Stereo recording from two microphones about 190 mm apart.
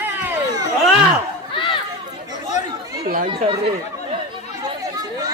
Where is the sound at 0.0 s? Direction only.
10° right (ahead or behind).